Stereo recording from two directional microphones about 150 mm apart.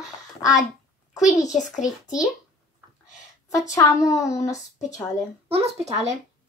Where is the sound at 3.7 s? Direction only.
20° left (ahead or behind).